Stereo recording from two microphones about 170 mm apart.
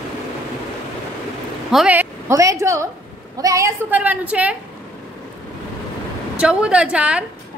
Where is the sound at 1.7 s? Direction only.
5° right (ahead or behind).